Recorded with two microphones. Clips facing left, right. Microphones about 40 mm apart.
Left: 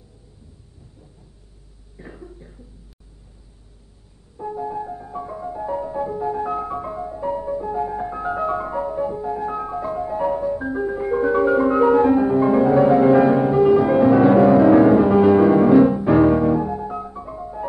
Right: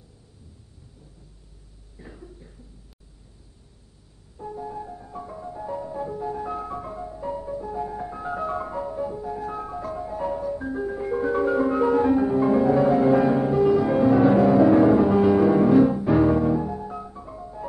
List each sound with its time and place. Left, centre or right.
2.0 s cough: left
4.4 s music: left